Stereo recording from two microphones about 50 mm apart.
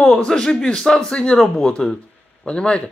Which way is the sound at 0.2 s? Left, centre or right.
Centre.